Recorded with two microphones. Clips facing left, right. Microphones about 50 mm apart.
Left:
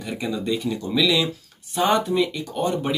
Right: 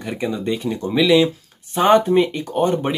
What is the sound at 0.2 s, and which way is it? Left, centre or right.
Speech, right.